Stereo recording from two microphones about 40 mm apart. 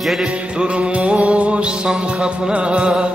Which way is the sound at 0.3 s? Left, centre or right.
Right.